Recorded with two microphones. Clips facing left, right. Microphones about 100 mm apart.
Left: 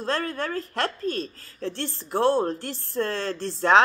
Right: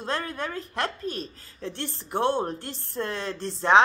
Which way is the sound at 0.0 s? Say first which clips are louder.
Left 3 dB; 20° right (ahead or behind).